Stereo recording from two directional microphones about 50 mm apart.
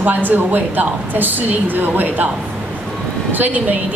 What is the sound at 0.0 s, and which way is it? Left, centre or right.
A woman's voice, right.